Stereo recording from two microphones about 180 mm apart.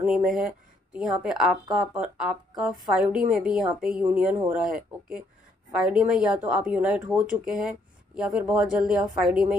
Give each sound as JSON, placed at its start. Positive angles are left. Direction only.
{"t": 0.0, "sound": "speech", "side_deg": -5}